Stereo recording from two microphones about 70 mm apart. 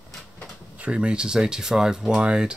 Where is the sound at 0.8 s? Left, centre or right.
Centre.